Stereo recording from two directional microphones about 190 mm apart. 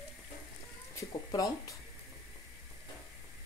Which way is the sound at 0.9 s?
20° left (ahead or behind).